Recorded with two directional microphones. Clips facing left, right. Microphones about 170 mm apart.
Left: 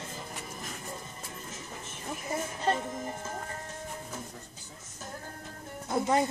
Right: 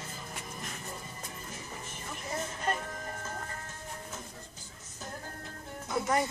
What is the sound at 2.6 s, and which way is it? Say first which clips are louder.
Music: left 7 dB; 25° left (ahead or behind).